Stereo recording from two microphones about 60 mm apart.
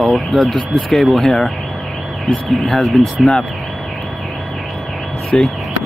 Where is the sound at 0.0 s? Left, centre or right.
Centre.